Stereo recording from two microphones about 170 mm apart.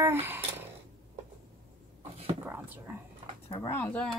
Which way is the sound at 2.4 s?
10° right (ahead or behind).